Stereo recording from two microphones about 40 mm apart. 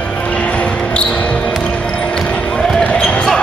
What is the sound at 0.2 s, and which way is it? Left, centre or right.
Basketball bounce, left.